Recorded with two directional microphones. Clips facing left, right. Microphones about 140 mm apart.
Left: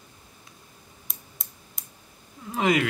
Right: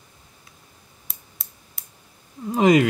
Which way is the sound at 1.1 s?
Centre (ahead or behind).